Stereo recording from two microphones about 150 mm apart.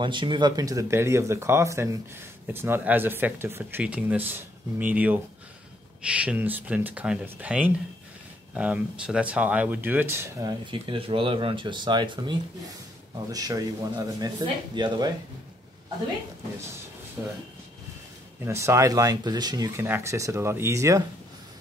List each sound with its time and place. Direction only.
0.0 s speech: 30° right (ahead or behind); by 10.5 s 15° right (ahead or behind)
10.7 s speech: 35° right (ahead or behind)
17.2 s speech: 15° right (ahead or behind)
18.4 s speech: 20° right (ahead or behind)
19.8 s speech: 15° right (ahead or behind)